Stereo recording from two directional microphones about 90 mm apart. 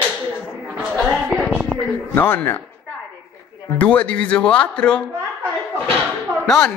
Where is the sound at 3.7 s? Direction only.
20° left (ahead or behind).